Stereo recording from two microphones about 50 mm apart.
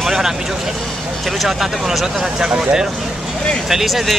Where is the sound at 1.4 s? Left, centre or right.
Centre.